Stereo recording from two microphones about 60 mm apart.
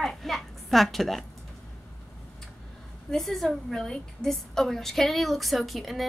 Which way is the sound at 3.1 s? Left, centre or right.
Centre.